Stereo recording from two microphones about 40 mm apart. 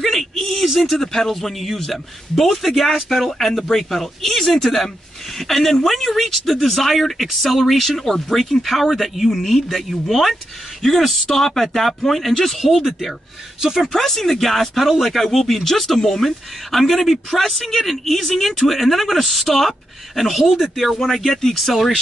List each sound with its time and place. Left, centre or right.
0.0 s a sound: centre
0.7 s speech: centre
13.9 s speech: centre
21.4 s speech: centre
21.6 s speech: centre